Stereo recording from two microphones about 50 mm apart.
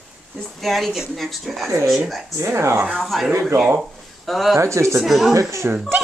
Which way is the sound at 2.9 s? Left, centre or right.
Centre.